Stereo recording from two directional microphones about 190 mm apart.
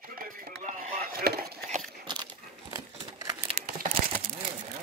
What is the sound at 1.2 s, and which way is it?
Chop, 55° right (ahead or behind).